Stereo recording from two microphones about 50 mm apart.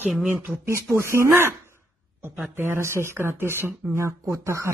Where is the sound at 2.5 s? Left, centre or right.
Right.